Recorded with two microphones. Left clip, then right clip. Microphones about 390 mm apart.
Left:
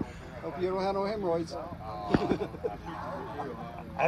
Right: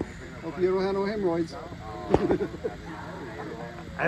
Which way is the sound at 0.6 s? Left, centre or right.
Centre.